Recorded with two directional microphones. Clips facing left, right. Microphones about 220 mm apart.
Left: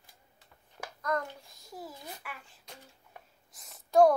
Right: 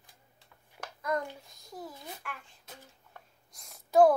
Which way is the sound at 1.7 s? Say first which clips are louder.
Right 1 dB; 5° left (ahead or behind).